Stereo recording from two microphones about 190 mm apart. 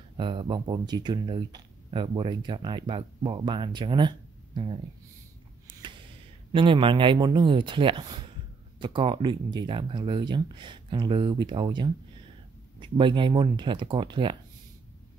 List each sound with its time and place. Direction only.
0.2 s speech: 25° right (ahead or behind)
6.5 s speech: 25° right (ahead or behind)